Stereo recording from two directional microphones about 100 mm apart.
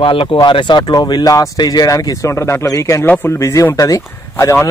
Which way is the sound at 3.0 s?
20° left (ahead or behind).